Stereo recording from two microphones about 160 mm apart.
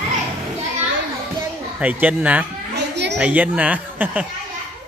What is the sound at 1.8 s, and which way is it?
Speech, 10° right (ahead or behind).